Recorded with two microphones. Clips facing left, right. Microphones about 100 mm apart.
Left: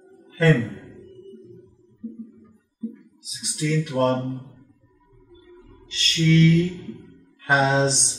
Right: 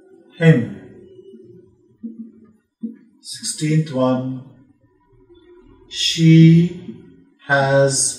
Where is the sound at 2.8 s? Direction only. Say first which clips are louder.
Right 4 dB; 30° right (ahead or behind).